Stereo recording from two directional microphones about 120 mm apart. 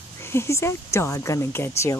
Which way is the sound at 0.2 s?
20° left (ahead or behind).